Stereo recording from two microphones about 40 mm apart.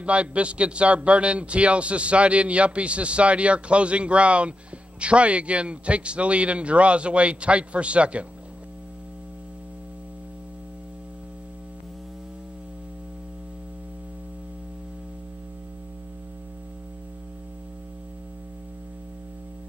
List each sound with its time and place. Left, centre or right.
0.0 s a man's voice: right